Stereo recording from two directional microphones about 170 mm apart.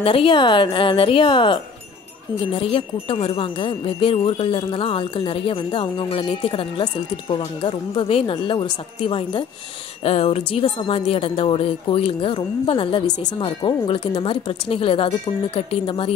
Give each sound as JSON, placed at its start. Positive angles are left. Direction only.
{"t": 0.0, "sound": "a woman's voice", "side_deg": 30}